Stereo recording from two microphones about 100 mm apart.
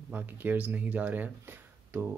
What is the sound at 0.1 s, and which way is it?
Speech, 20° right (ahead or behind).